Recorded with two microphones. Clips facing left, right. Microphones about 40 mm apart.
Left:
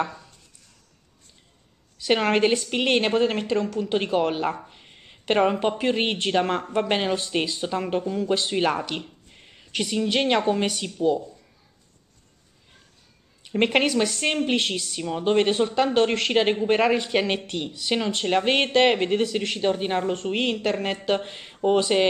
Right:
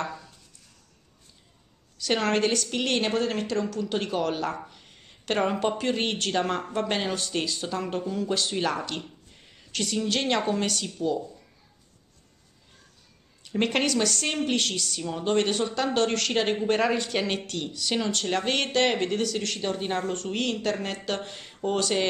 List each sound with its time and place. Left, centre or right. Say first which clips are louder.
2.0 s a woman's voice: left 4 dB; left
4.6 s a sound: left 2 dB; left
5.5 s a woman's voice: left 3 dB; centre
8.0 s speech: left 3 dB; centre
8.3 s a woman's voice: left 5 dB; left
13.4 s a woman's voice: left 4 dB; left